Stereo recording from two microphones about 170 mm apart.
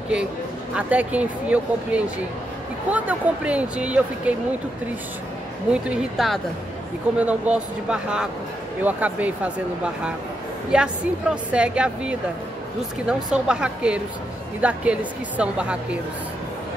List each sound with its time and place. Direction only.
0.7 s speech: 10° right (ahead or behind)
5.7 s speech: 5° right (ahead or behind)
10.7 s speech: 5° right (ahead or behind)